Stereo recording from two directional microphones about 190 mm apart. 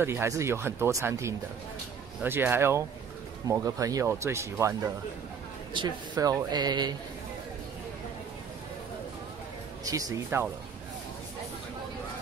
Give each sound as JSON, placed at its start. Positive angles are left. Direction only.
{"t": 0.0, "sound": "speech", "side_deg": -15}
{"t": 9.8, "sound": "speech", "side_deg": -20}